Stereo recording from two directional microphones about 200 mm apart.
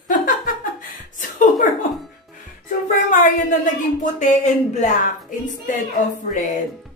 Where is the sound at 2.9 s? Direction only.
40° left (ahead or behind).